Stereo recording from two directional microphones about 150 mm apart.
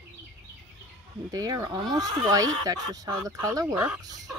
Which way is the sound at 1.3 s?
25° right (ahead or behind).